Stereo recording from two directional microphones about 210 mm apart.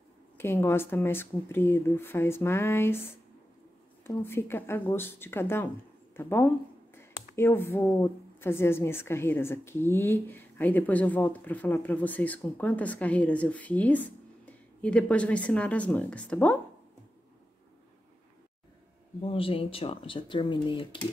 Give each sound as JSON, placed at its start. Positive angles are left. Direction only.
{"t": 0.4, "sound": "speech", "side_deg": 10}
{"t": 4.0, "sound": "speech", "side_deg": 10}
{"t": 19.2, "sound": "speech", "side_deg": 25}